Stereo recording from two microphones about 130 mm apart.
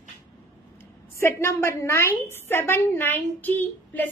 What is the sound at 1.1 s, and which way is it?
A woman's voice, 20° left (ahead or behind).